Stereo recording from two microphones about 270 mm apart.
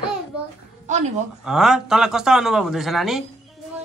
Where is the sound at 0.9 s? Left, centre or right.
Right.